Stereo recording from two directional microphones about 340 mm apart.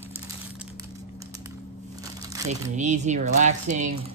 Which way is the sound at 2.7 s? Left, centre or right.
Right.